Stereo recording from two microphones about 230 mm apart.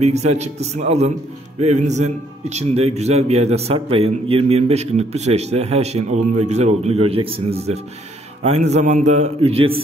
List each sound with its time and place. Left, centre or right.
0.0 s a man's voice: right